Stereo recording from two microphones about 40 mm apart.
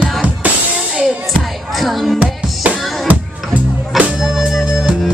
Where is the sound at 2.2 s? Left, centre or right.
Right.